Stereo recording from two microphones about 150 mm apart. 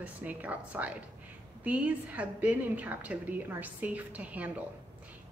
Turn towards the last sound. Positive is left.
turn(degrees=-10)  # may be behind; listen again after turning